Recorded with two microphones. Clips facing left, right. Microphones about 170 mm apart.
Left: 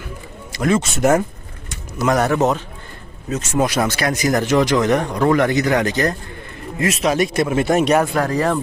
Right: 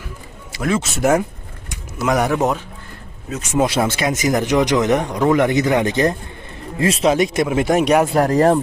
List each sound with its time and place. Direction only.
0.5 s speech: centre (ahead or behind)
3.6 s speech: 25° right (ahead or behind)
7.1 s speech: 15° right (ahead or behind)
8.3 s speech: 45° right (ahead or behind)